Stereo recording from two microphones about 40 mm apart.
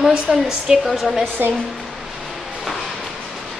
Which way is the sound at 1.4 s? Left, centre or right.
Right.